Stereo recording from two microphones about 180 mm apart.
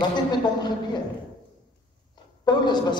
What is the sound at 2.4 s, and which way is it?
Speech, 25° left (ahead or behind).